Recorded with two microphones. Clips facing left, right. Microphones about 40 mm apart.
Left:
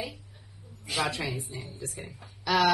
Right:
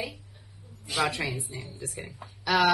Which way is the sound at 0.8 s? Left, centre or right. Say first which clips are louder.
Right 2 dB; centre.